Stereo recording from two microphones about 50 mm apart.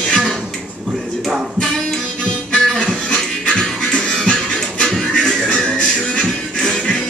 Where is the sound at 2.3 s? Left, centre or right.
Centre.